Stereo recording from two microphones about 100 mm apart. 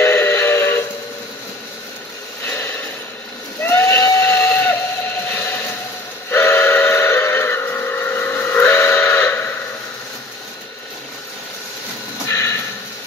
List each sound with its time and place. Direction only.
0.0 s music: 25° left (ahead or behind)
2.4 s pulleys: 20° left (ahead or behind)
3.6 s steam whistle: 25° left (ahead or behind)
6.3 s train: 25° left (ahead or behind)
12.3 s a sound: 30° left (ahead or behind)